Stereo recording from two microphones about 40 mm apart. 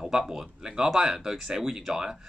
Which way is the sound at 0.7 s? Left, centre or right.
Centre.